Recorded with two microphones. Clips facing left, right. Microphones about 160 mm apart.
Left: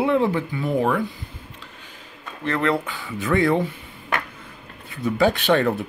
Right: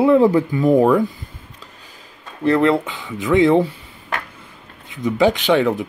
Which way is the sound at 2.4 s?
35° right (ahead or behind).